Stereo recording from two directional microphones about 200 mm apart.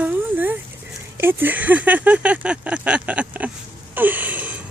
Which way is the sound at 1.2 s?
10° right (ahead or behind).